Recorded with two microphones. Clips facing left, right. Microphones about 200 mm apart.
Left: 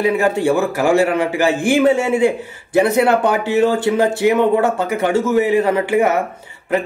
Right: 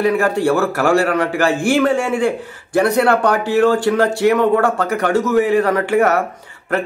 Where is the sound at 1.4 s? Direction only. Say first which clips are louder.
Left 2 dB; 20° left (ahead or behind).